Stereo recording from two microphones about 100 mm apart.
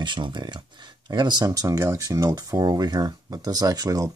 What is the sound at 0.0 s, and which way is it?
Speech, 50° right (ahead or behind).